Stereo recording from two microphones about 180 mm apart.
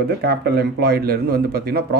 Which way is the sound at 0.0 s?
60° right (ahead or behind).